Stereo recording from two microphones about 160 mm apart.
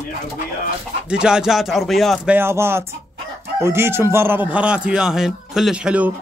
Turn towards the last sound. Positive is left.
turn(degrees=-5)  # may be behind; listen again after turning